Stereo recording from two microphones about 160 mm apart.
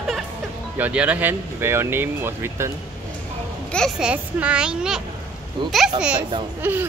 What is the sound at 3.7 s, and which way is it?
A child's voice, 5° left (ahead or behind).